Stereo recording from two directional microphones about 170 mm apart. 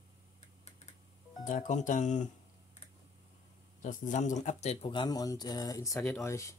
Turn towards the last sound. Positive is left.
turn(degrees=15)  # may be behind; listen again after turning